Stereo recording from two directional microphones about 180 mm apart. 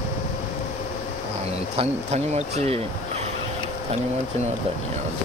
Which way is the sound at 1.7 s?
35° right (ahead or behind).